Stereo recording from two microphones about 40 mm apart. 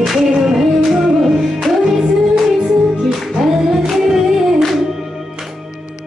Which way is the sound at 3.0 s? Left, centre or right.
Centre.